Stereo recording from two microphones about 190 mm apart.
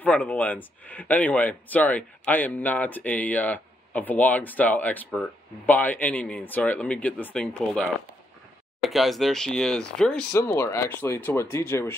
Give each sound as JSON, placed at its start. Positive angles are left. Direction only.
{"t": 0.0, "sound": "speech", "side_deg": 10}